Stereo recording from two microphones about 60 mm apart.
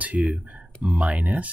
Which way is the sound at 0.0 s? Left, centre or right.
Right.